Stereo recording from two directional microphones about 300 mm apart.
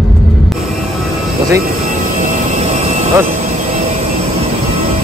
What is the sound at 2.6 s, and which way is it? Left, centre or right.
Vehicle, right.